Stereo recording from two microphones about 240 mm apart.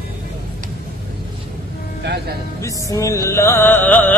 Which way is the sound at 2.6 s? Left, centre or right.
Centre.